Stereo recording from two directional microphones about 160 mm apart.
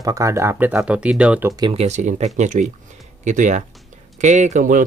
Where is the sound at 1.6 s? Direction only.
40° right (ahead or behind).